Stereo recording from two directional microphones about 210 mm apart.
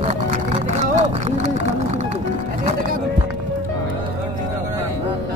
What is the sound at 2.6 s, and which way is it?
Music, 40° right (ahead or behind).